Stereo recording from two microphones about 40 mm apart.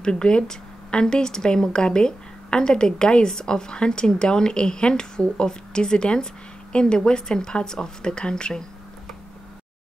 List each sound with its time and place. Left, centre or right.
0.0 s speech: centre